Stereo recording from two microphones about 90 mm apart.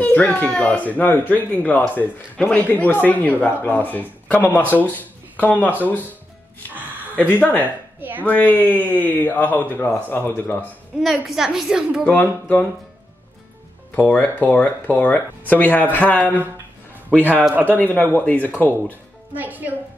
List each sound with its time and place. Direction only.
0.0 s speech: 15° left (ahead or behind)
7.2 s speech: 20° left (ahead or behind)
8.0 s a man's voice: 20° right (ahead or behind)
8.3 s speech: 20° left (ahead or behind)
11.0 s a woman's voice: centre (ahead or behind)
12.1 s speech: 15° left (ahead or behind)
13.9 s speech: 20° left (ahead or behind)
17.2 s a man's voice: 20° right (ahead or behind)
17.7 s speech: 20° left (ahead or behind)
18.7 s speech: 20° right (ahead or behind)